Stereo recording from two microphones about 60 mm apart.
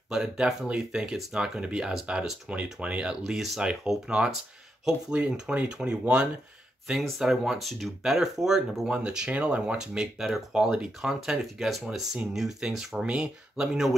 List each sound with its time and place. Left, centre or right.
0.1 s speech: centre
6.9 s speech: centre